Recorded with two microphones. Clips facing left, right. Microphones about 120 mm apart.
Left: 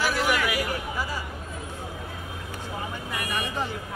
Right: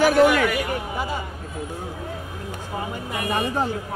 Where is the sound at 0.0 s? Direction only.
55° right (ahead or behind).